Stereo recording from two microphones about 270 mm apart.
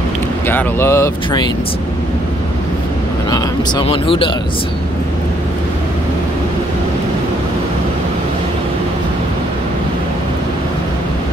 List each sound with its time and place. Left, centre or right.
0.5 s speech: centre
3.3 s speech: centre